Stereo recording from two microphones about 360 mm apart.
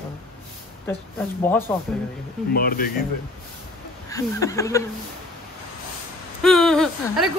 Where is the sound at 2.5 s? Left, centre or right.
Left.